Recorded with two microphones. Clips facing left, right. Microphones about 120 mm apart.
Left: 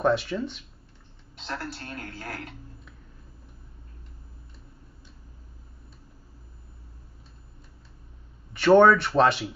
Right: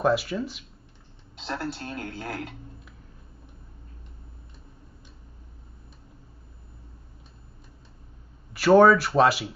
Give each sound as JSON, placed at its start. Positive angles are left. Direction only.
{"t": 0.0, "sound": "speech", "side_deg": 0}
{"t": 1.4, "sound": "speech", "side_deg": -20}
{"t": 8.5, "sound": "speech", "side_deg": -5}